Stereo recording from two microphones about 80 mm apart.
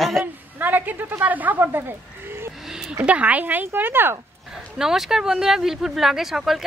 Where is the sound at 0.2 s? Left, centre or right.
Right.